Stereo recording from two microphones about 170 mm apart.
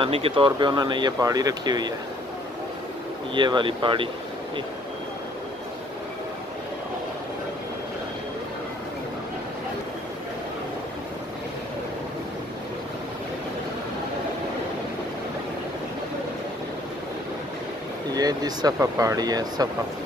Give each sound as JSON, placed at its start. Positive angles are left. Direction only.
{"t": 0.0, "sound": "speech", "side_deg": -30}
{"t": 3.3, "sound": "speech", "side_deg": -25}
{"t": 18.1, "sound": "speech", "side_deg": -20}